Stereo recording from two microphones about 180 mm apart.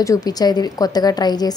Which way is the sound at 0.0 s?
20° left (ahead or behind).